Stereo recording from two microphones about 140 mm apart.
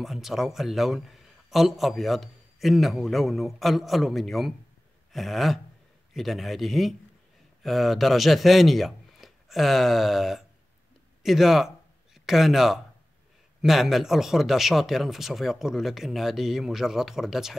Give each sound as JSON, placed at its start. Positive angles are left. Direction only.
{"t": 0.0, "sound": "a man's voice", "side_deg": 0}